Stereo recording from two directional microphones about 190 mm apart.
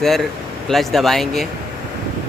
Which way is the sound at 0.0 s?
Centre (ahead or behind).